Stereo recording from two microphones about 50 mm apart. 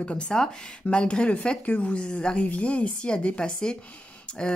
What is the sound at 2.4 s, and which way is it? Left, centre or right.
Speech, left.